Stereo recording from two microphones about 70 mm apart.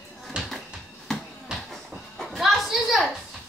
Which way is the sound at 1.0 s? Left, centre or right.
Centre.